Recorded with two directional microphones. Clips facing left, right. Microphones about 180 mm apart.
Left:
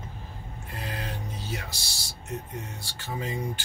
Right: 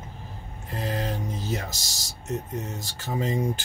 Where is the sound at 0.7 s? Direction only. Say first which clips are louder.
Right 7 dB; 40° right (ahead or behind).